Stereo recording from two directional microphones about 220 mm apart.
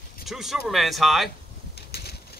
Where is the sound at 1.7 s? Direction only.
45° left (ahead or behind).